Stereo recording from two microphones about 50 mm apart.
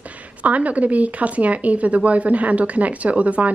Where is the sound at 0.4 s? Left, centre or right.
Right.